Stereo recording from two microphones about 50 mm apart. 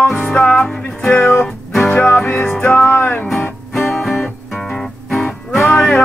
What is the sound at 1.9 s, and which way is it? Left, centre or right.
Music, left.